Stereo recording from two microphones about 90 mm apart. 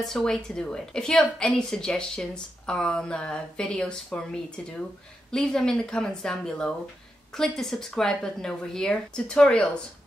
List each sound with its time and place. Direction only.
0.0 s a woman's voice: 5° left (ahead or behind)